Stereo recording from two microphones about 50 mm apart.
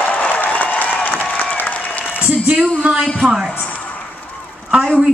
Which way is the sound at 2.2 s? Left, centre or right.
Right.